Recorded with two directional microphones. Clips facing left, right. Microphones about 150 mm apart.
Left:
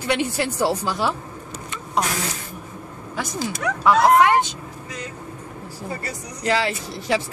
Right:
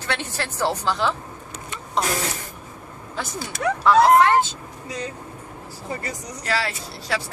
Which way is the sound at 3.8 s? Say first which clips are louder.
Even; 15° left (ahead or behind).